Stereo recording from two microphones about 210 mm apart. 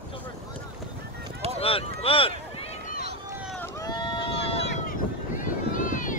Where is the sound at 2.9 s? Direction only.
50° left (ahead or behind).